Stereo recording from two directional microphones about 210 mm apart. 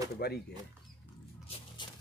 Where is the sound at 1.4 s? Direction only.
25° left (ahead or behind).